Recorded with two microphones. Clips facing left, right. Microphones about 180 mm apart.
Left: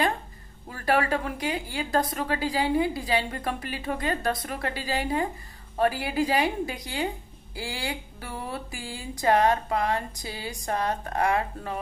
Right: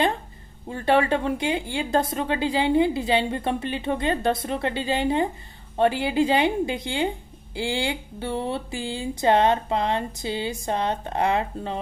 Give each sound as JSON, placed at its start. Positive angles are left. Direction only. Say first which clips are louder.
{"t": 0.7, "sound": "speech", "louder": "right 4 dB", "side_deg": -25}